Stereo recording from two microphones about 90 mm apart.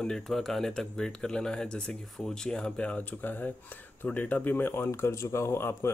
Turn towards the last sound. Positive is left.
turn(degrees=30)  # may be behind; listen again after turning